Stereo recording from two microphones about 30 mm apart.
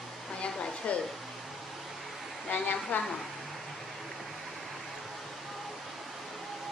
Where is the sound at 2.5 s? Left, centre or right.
Left.